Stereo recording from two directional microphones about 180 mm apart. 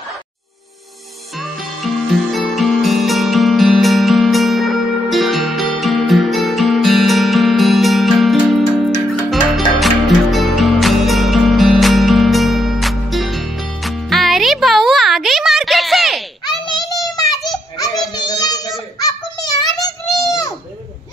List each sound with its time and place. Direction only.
1.4 s music: centre (ahead or behind)
16.6 s child singing: 20° left (ahead or behind)